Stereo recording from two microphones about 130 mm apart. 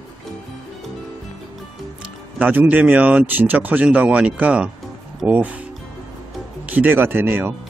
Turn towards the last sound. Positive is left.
turn(degrees=-15)  # may be behind; listen again after turning